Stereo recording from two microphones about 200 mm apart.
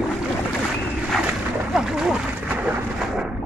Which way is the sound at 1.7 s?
5° right (ahead or behind).